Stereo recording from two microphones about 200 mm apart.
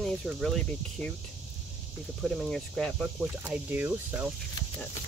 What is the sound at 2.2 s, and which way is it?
Speech, centre (ahead or behind).